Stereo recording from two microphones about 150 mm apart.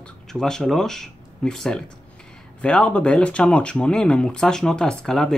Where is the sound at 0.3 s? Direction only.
5° left (ahead or behind).